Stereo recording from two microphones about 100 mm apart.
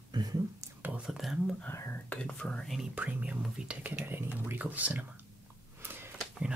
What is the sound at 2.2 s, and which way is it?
Speech, 10° left (ahead or behind).